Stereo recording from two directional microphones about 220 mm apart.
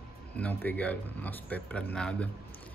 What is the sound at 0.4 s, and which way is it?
Speech, 10° left (ahead or behind).